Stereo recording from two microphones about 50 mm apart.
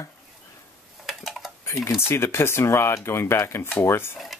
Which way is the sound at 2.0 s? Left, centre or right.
Left.